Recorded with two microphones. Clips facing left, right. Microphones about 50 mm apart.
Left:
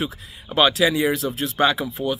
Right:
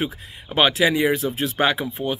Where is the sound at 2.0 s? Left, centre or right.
Centre.